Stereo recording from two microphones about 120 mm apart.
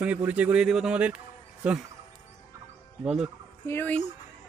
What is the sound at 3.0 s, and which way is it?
Speech, 5° right (ahead or behind).